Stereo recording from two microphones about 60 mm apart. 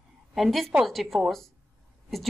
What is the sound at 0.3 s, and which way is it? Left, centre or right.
A woman's voice, centre.